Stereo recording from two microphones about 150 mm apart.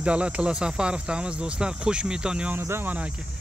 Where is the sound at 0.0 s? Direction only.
10° right (ahead or behind).